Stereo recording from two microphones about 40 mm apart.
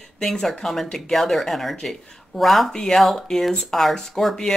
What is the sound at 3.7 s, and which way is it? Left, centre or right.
Speech, centre.